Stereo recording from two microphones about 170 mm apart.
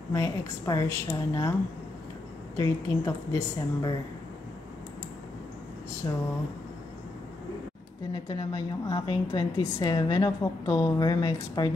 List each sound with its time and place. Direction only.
0.1 s a woman's voice: 20° left (ahead or behind)
2.5 s a woman's voice: 20° left (ahead or behind)
8.1 s a woman's voice: 25° left (ahead or behind)